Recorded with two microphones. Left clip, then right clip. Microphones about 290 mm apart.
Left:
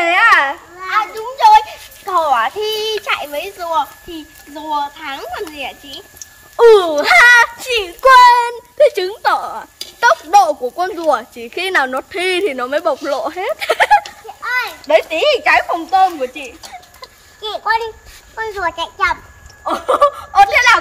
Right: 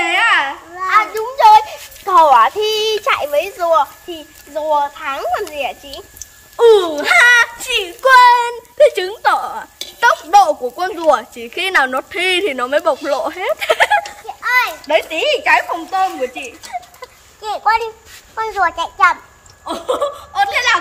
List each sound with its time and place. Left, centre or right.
0.0 s babbling: centre
0.8 s children playing: right
6.5 s speech: centre
14.4 s children playing: right
14.9 s speech: centre
17.4 s a child's voice: centre
19.6 s speech: centre